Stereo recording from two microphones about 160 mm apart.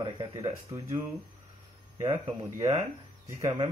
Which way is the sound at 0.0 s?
35° right (ahead or behind).